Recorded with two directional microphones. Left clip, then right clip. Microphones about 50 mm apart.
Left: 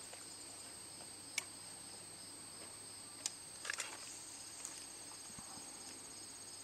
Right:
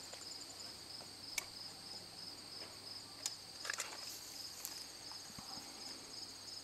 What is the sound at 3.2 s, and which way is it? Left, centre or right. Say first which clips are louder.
Camera: even; centre.